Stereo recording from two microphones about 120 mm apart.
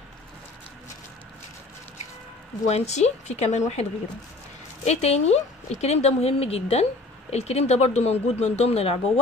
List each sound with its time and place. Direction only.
2.6 s a woman's voice: 70° left (ahead or behind)
4.8 s speech: 65° left (ahead or behind)